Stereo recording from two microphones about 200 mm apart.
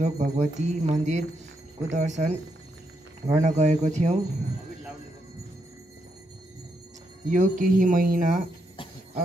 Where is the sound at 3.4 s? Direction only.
35° right (ahead or behind).